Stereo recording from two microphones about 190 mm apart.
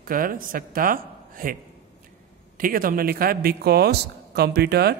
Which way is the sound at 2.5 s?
50° right (ahead or behind).